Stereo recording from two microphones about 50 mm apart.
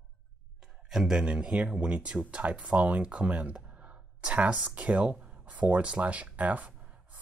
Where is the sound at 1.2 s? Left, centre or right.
Right.